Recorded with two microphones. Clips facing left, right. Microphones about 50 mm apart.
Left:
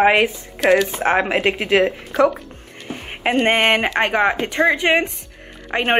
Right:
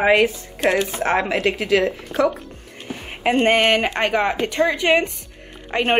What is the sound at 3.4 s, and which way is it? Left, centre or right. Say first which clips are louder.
Speech: even; left.